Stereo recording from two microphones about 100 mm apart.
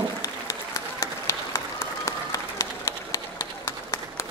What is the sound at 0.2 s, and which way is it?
Applause, 30° left (ahead or behind).